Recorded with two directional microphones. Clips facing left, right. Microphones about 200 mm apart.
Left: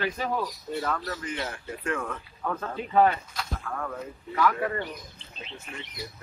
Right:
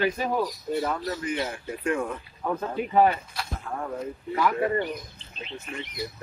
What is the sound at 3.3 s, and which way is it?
Speech, 25° right (ahead or behind).